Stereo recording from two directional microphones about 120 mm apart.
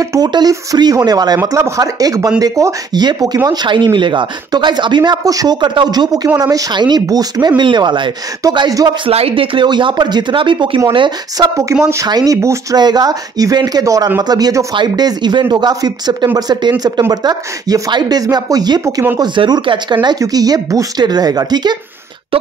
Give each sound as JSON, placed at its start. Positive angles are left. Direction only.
{"t": 0.0, "sound": "speech", "side_deg": -30}
{"t": 9.0, "sound": "speech", "side_deg": -50}
{"t": 11.8, "sound": "speech", "side_deg": -25}